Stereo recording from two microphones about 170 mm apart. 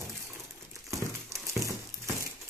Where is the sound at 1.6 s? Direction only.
15° right (ahead or behind).